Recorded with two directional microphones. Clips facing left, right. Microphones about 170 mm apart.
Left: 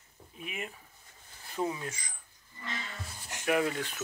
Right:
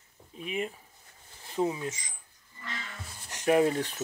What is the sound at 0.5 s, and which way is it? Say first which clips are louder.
Speech: right 8 dB; 30° right (ahead or behind).